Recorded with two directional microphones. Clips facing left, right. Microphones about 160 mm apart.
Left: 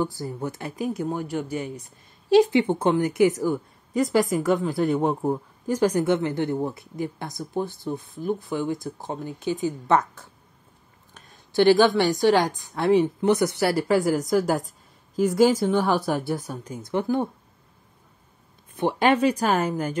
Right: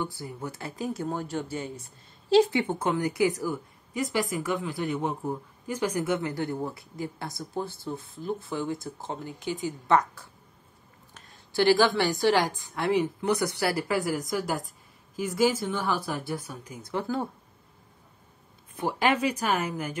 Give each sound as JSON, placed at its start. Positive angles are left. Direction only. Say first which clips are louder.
{"t": 0.4, "sound": "speech", "louder": "left 4 dB", "side_deg": 20}
{"t": 3.9, "sound": "speech", "louder": "left 7 dB", "side_deg": 45}
{"t": 6.0, "sound": "a woman's voice", "louder": "left 5 dB", "side_deg": 25}
{"t": 11.1, "sound": "a woman's voice", "louder": "left 5 dB", "side_deg": 20}
{"t": 15.2, "sound": "speech", "louder": "left 6 dB", "side_deg": 55}
{"t": 16.9, "sound": "a woman's voice", "louder": "left 6 dB", "side_deg": 20}
{"t": 18.8, "sound": "a woman's voice", "louder": "left 5 dB", "side_deg": 25}